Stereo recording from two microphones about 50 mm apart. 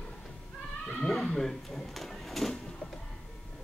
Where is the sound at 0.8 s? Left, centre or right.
Left.